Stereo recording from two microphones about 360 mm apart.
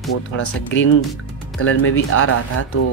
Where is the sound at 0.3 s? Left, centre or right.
Left.